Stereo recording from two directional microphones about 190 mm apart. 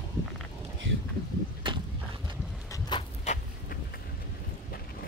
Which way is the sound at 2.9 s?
25° left (ahead or behind).